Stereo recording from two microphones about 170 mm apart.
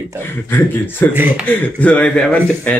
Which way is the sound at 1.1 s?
10° right (ahead or behind).